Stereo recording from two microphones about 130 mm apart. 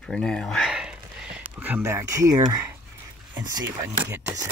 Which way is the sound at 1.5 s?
15° right (ahead or behind).